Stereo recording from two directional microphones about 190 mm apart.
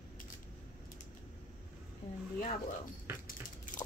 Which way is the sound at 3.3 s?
45° left (ahead or behind).